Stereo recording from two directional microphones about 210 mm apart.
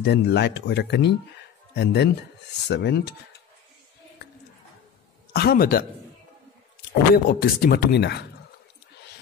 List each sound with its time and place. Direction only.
0.0 s speech: 55° left (ahead or behind)
5.3 s speech: 45° left (ahead or behind)
6.9 s speech: 45° left (ahead or behind)